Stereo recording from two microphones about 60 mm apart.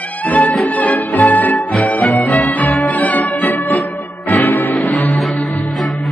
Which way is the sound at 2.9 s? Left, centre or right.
Left.